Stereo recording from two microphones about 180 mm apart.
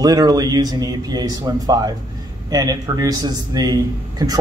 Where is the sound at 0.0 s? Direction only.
20° right (ahead or behind).